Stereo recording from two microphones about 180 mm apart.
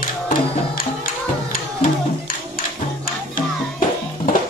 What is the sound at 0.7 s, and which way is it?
Music, 50° left (ahead or behind).